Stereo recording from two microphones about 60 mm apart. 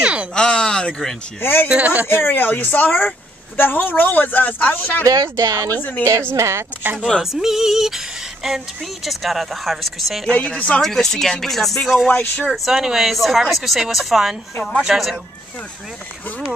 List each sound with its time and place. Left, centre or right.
0.0 s a sound: centre
0.3 s speech: centre
1.4 s speech: left
1.7 s speech: right
2.0 s speech: left
5.0 s speech: right
6.3 s speech: right
7.2 s a woman's voice: centre
10.3 s speech: left
10.8 s a woman's voice: centre
12.1 s speech: left
12.6 s a woman's voice: centre